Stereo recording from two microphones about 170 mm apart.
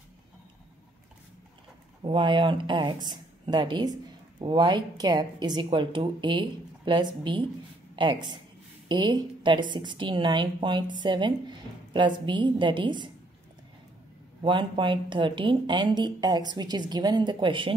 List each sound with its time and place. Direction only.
2.0 s a woman's voice: 30° right (ahead or behind)
14.4 s speech: 30° right (ahead or behind)